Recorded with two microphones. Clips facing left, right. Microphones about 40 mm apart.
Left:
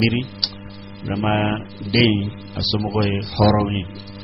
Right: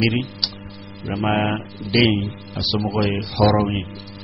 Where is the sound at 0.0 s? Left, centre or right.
Centre.